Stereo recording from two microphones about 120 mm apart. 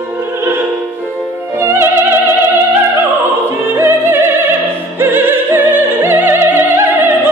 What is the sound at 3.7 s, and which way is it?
Opera, 20° right (ahead or behind).